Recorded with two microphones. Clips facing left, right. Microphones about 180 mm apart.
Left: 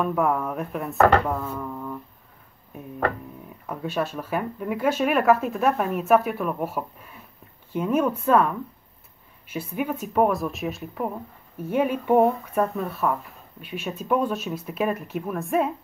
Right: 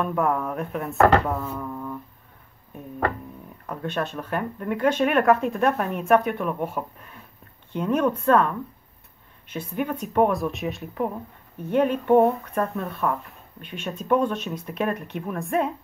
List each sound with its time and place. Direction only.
0.0 s speech: centre (ahead or behind)
3.6 s speech: 5° left (ahead or behind)